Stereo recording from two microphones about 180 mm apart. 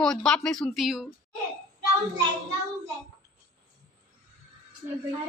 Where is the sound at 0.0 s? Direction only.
5° left (ahead or behind).